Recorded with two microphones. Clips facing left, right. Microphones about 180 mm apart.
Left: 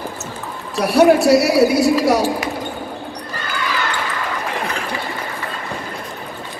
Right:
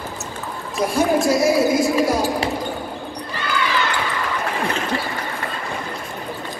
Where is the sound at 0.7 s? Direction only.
70° left (ahead or behind).